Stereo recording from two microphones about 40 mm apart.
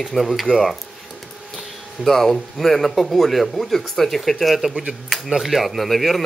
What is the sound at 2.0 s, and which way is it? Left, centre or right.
Speech, centre.